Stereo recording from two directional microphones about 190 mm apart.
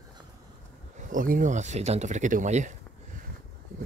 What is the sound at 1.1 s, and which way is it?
Speech, 45° right (ahead or behind).